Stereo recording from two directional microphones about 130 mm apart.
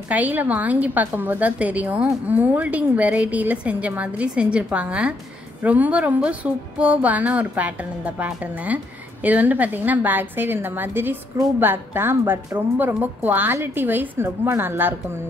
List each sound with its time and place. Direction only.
0.1 s a woman's voice: 10° right (ahead or behind)